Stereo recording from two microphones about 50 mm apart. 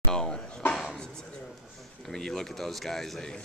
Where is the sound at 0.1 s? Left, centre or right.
Centre.